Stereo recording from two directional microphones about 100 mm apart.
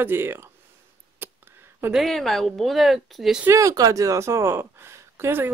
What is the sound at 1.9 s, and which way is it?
Speech, centre (ahead or behind).